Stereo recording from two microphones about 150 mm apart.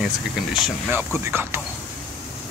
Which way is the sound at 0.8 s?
15° right (ahead or behind).